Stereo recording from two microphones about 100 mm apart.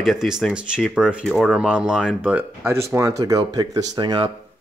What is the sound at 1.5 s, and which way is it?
Speech, 10° right (ahead or behind).